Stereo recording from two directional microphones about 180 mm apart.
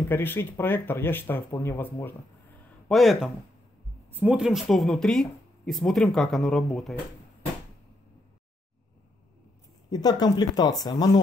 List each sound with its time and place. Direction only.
0.1 s speech: 10° left (ahead or behind)
2.9 s speech: centre (ahead or behind)
9.8 s speech: 20° left (ahead or behind)